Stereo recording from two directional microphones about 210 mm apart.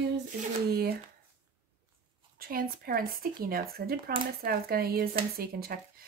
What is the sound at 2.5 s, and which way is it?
Speech, 45° right (ahead or behind).